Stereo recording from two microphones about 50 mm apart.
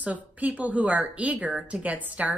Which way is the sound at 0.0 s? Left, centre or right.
Right.